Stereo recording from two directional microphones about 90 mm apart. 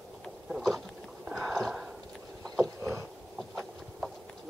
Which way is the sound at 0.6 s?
Centre (ahead or behind).